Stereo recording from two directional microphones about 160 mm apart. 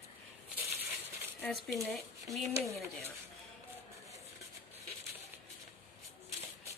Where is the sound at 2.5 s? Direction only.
20° right (ahead or behind).